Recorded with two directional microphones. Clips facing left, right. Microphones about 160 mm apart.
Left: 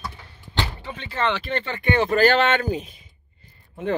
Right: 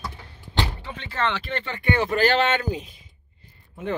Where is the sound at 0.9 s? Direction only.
15° left (ahead or behind).